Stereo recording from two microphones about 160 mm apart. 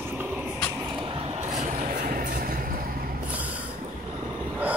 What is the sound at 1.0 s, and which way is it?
Vehicle, 35° right (ahead or behind).